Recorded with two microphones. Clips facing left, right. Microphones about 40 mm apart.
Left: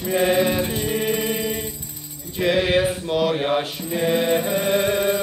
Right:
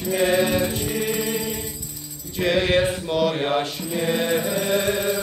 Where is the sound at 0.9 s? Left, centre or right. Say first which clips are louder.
Left 2 dB; left.